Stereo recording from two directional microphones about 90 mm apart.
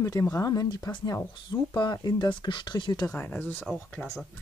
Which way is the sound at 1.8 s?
55° left (ahead or behind).